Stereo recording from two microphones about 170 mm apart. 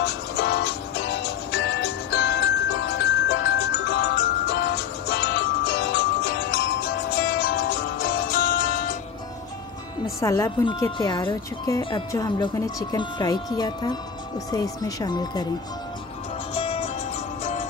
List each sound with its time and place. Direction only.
0.0 s music: 75° left (ahead or behind); by 8.9 s 60° left (ahead or behind)
10.2 s speech: 20° left (ahead or behind)
16.5 s music: 35° left (ahead or behind)